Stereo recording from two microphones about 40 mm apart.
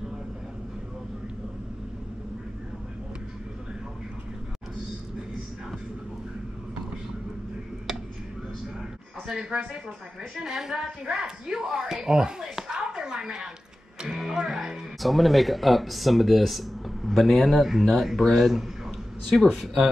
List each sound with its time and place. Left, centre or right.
10.3 s speech: centre